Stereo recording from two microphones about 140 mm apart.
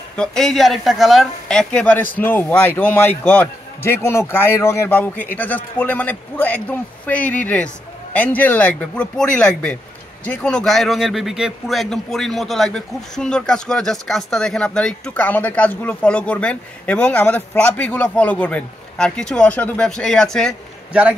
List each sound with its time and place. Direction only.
0.2 s a man's voice: 5° left (ahead or behind)
20.9 s a man's voice: 10° right (ahead or behind)